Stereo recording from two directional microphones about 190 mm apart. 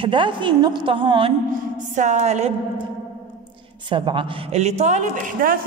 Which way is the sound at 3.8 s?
25° right (ahead or behind).